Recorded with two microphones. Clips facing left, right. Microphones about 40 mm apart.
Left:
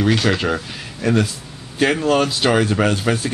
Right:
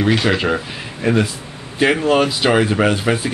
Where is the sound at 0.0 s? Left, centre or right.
Centre.